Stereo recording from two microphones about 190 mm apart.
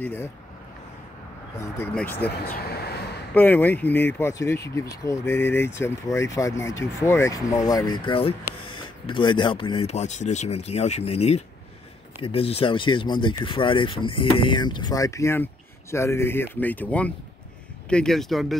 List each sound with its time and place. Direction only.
0.0 s speech: 10° left (ahead or behind)
1.6 s speech: 10° left (ahead or behind)
2.5 s a sound: 55° left (ahead or behind)
3.3 s speech: 10° left (ahead or behind)